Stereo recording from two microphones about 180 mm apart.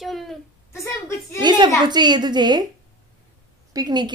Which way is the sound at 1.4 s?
25° right (ahead or behind).